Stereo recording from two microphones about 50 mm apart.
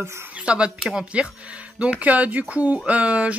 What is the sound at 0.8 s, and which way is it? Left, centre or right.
Speech, centre.